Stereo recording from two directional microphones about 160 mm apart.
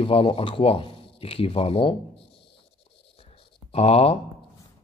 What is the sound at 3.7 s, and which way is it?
Speech, 40° left (ahead or behind).